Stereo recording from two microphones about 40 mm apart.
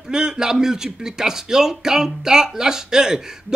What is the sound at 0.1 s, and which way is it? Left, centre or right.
A man's voice, centre.